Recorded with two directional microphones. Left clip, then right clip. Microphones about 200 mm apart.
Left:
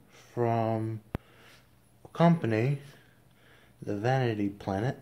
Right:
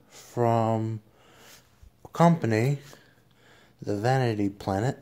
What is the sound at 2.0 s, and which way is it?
Speech, 40° right (ahead or behind).